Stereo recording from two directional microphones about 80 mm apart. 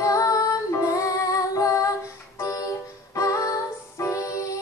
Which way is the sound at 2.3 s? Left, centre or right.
Left.